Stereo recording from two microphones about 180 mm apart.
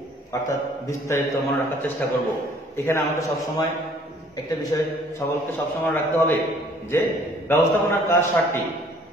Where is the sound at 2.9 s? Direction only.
15° left (ahead or behind).